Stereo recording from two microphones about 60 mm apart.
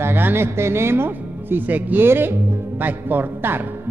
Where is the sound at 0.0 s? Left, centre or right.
Right.